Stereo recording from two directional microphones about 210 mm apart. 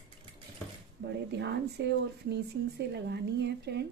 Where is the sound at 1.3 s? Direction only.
55° right (ahead or behind).